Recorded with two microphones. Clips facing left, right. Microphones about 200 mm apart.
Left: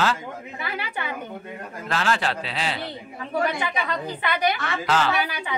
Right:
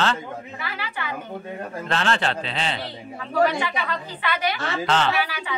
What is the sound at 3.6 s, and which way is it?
A woman's voice, 20° left (ahead or behind).